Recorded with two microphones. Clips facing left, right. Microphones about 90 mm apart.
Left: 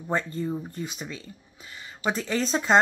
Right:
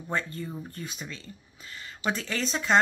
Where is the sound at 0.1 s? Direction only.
25° left (ahead or behind).